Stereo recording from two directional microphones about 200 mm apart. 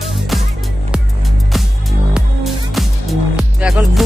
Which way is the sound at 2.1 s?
Centre (ahead or behind).